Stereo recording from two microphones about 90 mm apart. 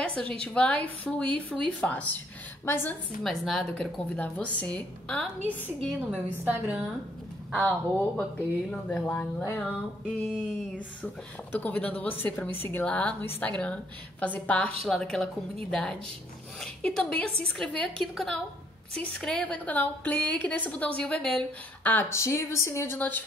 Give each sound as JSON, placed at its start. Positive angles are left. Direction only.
{"t": 0.0, "sound": "a woman's voice", "side_deg": 10}
{"t": 3.3, "sound": "a woman's voice", "side_deg": 0}
{"t": 4.1, "sound": "a woman's voice", "side_deg": 15}
{"t": 6.1, "sound": "a woman's voice", "side_deg": -15}
{"t": 7.5, "sound": "a woman's voice", "side_deg": 10}
{"t": 11.6, "sound": "a woman's voice", "side_deg": 20}
{"t": 22.1, "sound": "a woman's voice", "side_deg": 30}
{"t": 22.9, "sound": "a woman's voice", "side_deg": 20}